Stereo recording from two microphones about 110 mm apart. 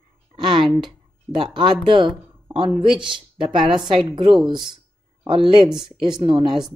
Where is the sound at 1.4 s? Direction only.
45° right (ahead or behind).